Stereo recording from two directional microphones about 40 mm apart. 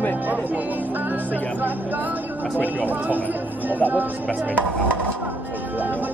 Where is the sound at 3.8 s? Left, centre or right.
Right.